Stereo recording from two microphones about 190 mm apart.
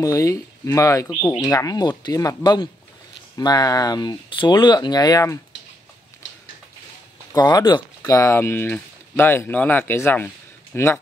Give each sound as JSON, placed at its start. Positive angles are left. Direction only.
{"t": 0.0, "sound": "speech", "side_deg": 15}
{"t": 7.3, "sound": "speech", "side_deg": 20}